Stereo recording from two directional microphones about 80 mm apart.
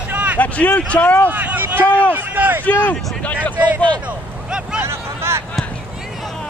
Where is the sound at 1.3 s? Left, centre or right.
Right.